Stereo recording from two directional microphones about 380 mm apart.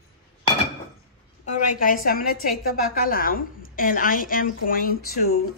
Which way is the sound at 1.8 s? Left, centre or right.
Left.